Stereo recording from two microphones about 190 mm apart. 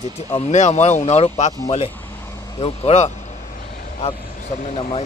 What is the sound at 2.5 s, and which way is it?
Speech, 30° left (ahead or behind).